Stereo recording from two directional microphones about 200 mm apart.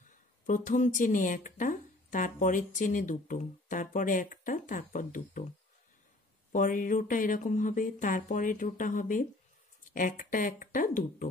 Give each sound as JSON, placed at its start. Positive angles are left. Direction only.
{"t": 0.5, "sound": "speech", "side_deg": 40}
{"t": 6.5, "sound": "speech", "side_deg": 40}